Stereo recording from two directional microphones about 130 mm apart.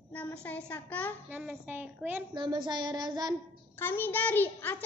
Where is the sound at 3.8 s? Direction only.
15° left (ahead or behind).